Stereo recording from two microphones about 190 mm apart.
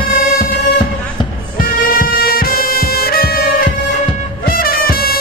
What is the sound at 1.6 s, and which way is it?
Music, 50° left (ahead or behind).